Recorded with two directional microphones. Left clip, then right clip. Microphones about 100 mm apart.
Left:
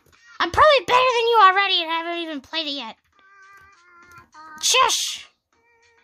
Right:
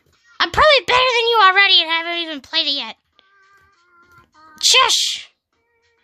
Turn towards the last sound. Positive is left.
turn(degrees=5)  # may be behind; listen again after turning